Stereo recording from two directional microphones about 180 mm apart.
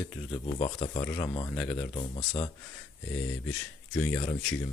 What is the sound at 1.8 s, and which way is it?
Speech, 30° left (ahead or behind).